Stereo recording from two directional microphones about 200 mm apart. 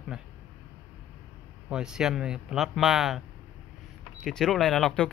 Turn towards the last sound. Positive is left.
turn(degrees=5)  # may be behind; listen again after turning